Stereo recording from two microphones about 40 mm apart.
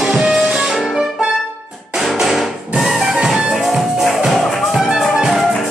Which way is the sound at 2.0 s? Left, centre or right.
Centre.